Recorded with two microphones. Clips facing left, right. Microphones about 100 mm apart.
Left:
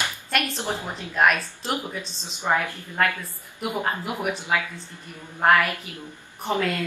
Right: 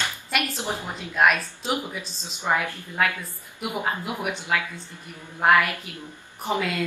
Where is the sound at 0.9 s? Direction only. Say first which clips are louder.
Even; centre (ahead or behind).